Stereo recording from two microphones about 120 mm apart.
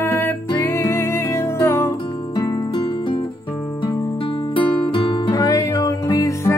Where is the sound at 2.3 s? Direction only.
35° left (ahead or behind).